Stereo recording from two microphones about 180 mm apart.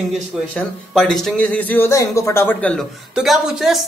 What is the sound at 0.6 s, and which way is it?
Speech, centre (ahead or behind).